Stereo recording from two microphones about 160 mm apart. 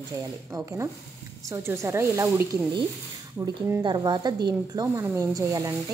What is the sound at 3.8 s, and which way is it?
Speech, 25° right (ahead or behind).